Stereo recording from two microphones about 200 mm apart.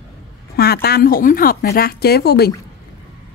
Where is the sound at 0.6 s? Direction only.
50° left (ahead or behind).